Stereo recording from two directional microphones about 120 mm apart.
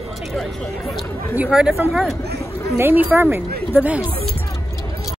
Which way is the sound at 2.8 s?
15° right (ahead or behind).